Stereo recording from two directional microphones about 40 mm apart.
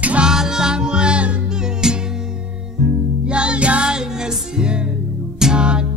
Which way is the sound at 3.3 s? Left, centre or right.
Right.